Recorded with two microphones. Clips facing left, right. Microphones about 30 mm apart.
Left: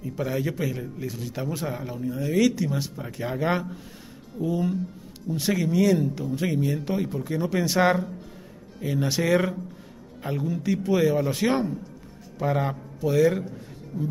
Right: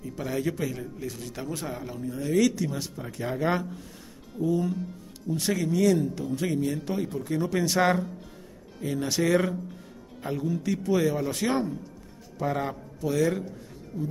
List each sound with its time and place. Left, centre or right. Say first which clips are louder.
0.0 s a man's voice: left 2 dB; centre
13.9 s speech: left 2 dB; centre